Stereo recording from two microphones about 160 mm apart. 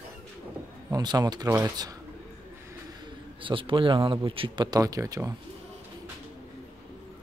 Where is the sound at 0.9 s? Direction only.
25° right (ahead or behind).